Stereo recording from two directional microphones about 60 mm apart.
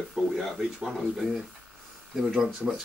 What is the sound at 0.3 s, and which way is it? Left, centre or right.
Speech, centre.